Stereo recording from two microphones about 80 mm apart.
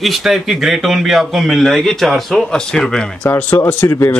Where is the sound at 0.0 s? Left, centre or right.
Centre.